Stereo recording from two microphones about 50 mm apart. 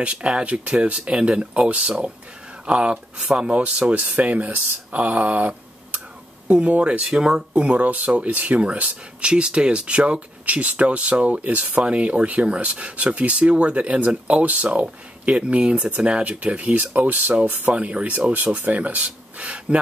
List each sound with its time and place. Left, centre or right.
0.0 s speech: right
7.5 s speech: right